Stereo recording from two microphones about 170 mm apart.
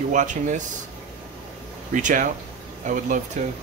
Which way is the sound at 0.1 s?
45° right (ahead or behind).